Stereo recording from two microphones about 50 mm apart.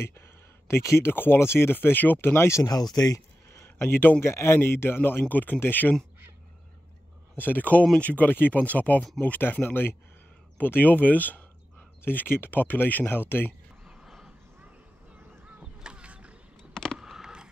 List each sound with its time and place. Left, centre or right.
0.7 s speech: left
1.1 s speech: left
2.1 s speech: left
3.8 s speech: left
4.2 s speech: left
4.6 s speech: left
5.3 s speech: left
7.3 s speech: left
13.8 s horse: centre
15.6 s a sound: centre
16.7 s a sound: centre
17.0 s a sound: centre